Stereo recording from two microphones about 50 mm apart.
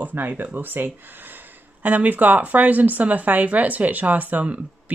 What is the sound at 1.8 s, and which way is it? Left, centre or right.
Speech, right.